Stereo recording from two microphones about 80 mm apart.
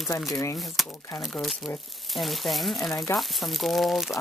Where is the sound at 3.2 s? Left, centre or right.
Centre.